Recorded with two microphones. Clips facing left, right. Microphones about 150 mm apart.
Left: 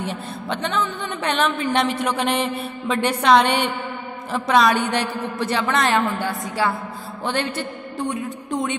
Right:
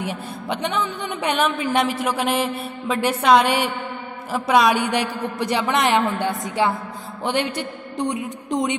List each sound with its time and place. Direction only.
0.0 s a woman's voice: 10° right (ahead or behind)